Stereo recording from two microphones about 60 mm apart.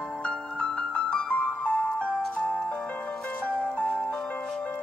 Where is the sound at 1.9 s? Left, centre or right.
Centre.